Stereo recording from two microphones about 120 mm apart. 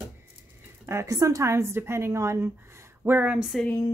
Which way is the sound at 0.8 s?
25° right (ahead or behind).